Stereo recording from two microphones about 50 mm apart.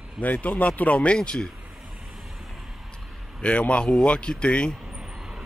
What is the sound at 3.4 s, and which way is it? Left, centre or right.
Speech, left.